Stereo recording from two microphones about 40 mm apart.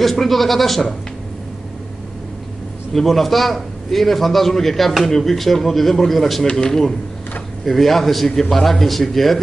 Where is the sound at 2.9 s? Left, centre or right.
Centre.